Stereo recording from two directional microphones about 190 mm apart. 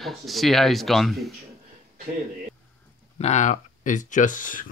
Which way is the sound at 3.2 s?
40° left (ahead or behind).